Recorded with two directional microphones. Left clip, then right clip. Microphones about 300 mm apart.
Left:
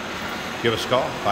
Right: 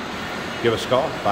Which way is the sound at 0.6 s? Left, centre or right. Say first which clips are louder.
Right 2 dB; centre.